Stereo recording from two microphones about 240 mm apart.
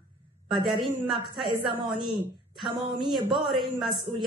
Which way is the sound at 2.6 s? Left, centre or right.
Centre.